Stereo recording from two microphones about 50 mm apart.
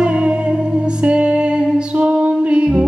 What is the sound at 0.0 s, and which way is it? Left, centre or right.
Music, centre.